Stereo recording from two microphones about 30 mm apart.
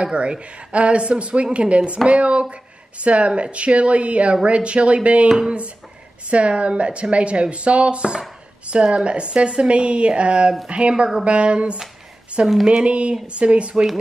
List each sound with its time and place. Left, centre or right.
0.0 s a woman's voice: right
6.3 s a woman's voice: right